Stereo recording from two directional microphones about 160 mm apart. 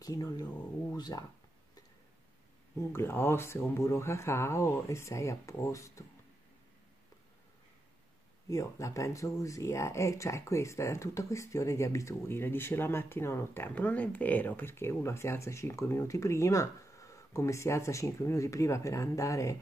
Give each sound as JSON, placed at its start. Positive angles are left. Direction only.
{"t": 0.0, "sound": "speech", "side_deg": 20}
{"t": 2.8, "sound": "speech", "side_deg": 15}
{"t": 8.5, "sound": "speech", "side_deg": 20}